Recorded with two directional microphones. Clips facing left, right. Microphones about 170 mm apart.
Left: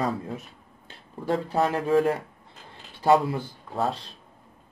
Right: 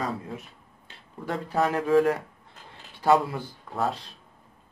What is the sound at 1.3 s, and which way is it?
Speech, 25° left (ahead or behind).